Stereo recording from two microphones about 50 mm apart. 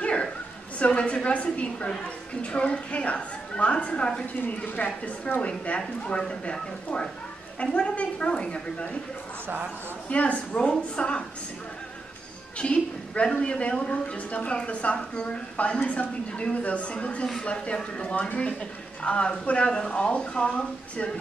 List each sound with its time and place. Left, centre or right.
0.0 s a sound: left
0.7 s speech: left
10.0 s speech: left
12.5 s speech: left